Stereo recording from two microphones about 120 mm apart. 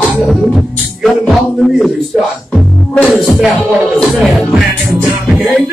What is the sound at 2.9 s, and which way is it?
Music, 5° left (ahead or behind).